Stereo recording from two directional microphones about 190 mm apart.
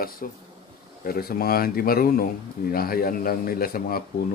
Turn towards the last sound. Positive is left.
turn(degrees=50)  # may be behind; listen again after turning